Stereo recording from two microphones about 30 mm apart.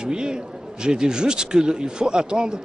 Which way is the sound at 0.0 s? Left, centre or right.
Right.